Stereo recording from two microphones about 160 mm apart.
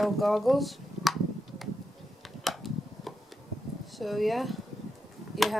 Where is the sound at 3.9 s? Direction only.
Centre (ahead or behind).